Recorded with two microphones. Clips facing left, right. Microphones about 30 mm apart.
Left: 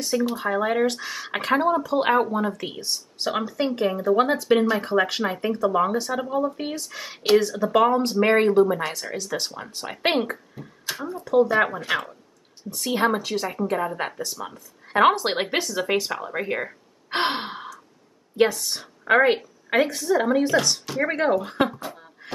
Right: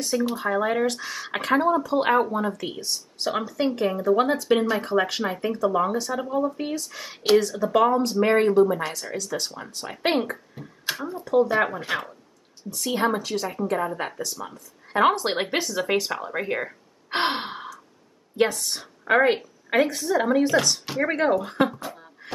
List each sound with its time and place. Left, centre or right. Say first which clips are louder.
0.0 s speech: left 1 dB; centre
10.6 s speech: even; right
11.2 s speech: left 2 dB; centre
14.4 s speech: left 1 dB; centre
15.1 s a woman's voice: left 1 dB; centre